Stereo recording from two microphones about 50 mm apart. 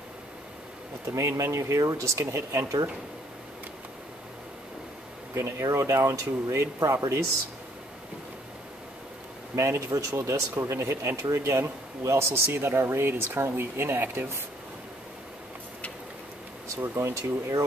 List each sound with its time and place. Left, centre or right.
1.1 s speech: right
5.3 s speech: right
9.6 s speech: right
10.7 s speech: right
12.5 s speech: right
16.8 s speech: right